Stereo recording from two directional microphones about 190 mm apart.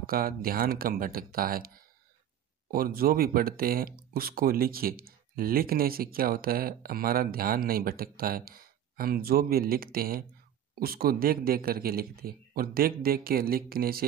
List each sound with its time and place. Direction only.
0.0 s speech: 50° right (ahead or behind)